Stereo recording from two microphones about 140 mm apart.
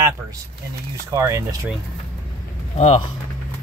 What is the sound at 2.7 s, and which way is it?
Speech, 45° left (ahead or behind).